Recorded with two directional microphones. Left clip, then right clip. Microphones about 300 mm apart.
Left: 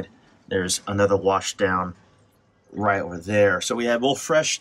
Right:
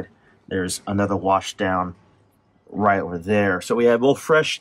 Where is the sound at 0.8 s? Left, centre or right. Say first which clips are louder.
Left 3 dB; right.